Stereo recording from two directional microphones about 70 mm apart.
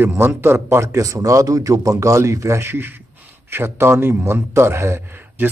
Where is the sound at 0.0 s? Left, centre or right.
Right.